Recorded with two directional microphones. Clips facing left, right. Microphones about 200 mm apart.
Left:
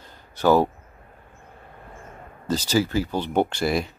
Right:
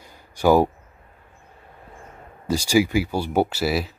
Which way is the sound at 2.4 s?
10° right (ahead or behind).